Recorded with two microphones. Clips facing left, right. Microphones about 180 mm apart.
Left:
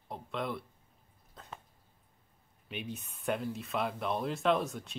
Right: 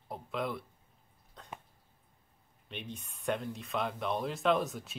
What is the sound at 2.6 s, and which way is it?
Speech, 5° left (ahead or behind).